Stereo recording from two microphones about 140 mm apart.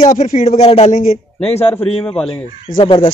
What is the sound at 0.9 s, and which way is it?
Speech, 65° left (ahead or behind).